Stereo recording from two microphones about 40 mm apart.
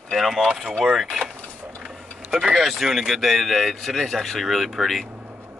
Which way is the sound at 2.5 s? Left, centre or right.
Centre.